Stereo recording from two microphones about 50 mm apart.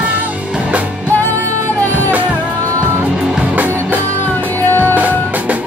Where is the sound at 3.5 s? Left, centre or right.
Right.